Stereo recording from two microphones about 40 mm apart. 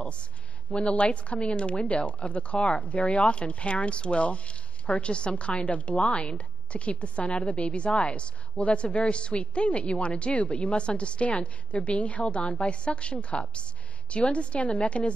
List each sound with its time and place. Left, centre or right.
0.7 s a woman's voice: left
5.9 s a woman's voice: left